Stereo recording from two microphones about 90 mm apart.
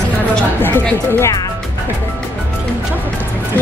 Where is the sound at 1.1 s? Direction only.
30° left (ahead or behind).